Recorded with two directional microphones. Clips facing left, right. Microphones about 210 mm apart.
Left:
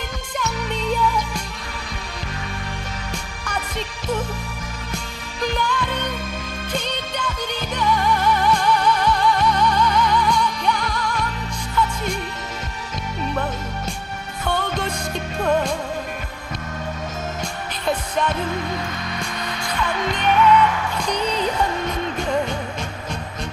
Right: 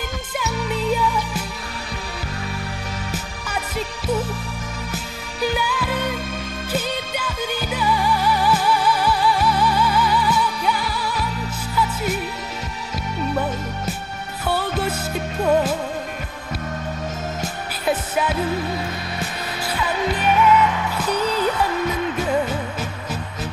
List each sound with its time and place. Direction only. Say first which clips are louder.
0.4 s music: right 1 dB; 5° right (ahead or behind)
3.1 s music: right 1 dB; 5° right (ahead or behind)
7.7 s music: left 1 dB; 5° right (ahead or behind)
13.3 s music: right 2 dB; 5° right (ahead or behind)
17.4 s music: right 1 dB; 5° right (ahead or behind)
22.2 s music: even; 5° right (ahead or behind)